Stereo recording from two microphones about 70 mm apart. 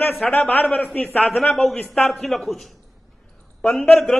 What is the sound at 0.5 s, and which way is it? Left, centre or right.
Speech, left.